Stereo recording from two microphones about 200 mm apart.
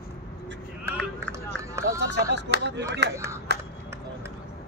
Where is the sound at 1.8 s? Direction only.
15° right (ahead or behind).